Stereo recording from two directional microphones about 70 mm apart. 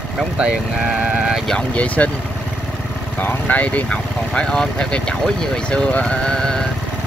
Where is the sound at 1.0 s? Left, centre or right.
Centre.